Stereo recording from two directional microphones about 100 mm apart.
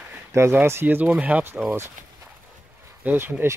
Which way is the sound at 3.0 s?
20° right (ahead or behind).